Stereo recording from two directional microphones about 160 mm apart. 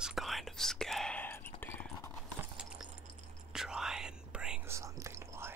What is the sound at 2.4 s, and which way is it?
Keys jangling, 5° right (ahead or behind).